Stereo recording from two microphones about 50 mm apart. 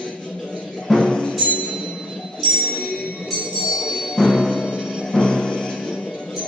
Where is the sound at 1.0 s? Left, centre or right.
Left.